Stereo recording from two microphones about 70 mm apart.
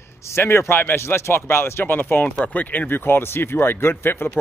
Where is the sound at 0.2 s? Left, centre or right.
Left.